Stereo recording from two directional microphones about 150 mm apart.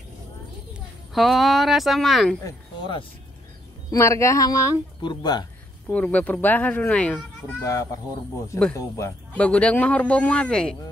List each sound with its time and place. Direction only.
1.1 s speech: centre (ahead or behind)
3.9 s speech: 20° left (ahead or behind)
5.9 s speech: 10° left (ahead or behind)
7.6 s speech: 20° left (ahead or behind); by 10.8 s 5° left (ahead or behind)